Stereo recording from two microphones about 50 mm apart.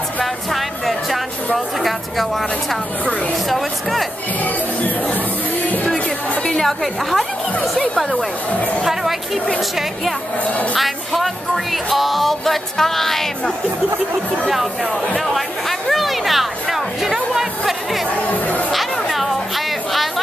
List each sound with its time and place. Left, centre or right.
0.2 s music: centre
1.8 s speech: centre
3.4 s speech: centre
6.4 s a woman's voice: centre
8.8 s speech: centre
10.8 s speech: centre
15.9 s music: centre
18.2 s chatter: left
18.7 s chatter: centre